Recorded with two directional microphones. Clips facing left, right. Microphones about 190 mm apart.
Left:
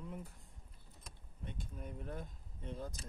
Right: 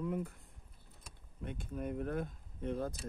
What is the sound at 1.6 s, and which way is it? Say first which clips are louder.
Speech: right 11 dB; 65° right (ahead or behind).